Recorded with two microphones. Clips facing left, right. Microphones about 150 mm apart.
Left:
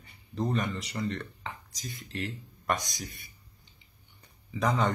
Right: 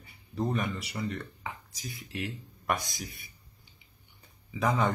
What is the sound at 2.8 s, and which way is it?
Speech, 15° left (ahead or behind).